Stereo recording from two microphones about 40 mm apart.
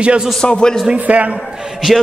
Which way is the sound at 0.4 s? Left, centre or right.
Centre.